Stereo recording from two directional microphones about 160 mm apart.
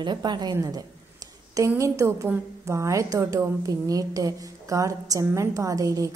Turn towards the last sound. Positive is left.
turn(degrees=-20)  # may be behind; listen again after turning